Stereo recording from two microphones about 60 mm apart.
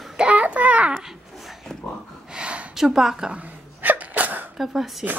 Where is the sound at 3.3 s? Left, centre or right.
Right.